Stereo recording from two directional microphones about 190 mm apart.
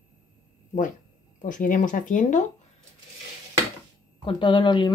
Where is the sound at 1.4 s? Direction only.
45° left (ahead or behind).